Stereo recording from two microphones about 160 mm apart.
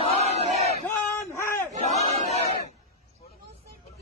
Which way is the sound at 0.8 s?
15° left (ahead or behind).